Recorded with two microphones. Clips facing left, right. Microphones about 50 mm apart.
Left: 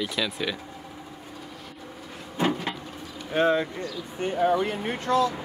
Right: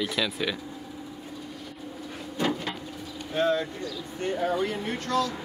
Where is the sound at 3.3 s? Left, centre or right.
Left.